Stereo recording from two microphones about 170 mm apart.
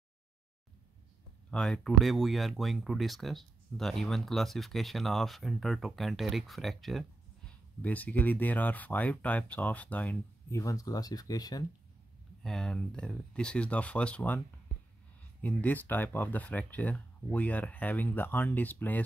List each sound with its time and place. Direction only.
1.5 s speech: 5° left (ahead or behind)
10.6 s speech: 20° left (ahead or behind)
12.4 s speech: 5° left (ahead or behind)
15.4 s speech: 10° left (ahead or behind)